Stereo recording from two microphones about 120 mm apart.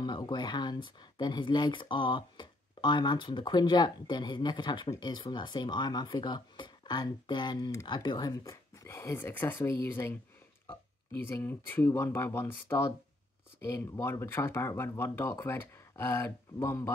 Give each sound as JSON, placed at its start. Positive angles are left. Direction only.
{"t": 0.0, "sound": "speech", "side_deg": 35}
{"t": 8.8, "sound": "speech", "side_deg": 20}
{"t": 11.2, "sound": "speech", "side_deg": 20}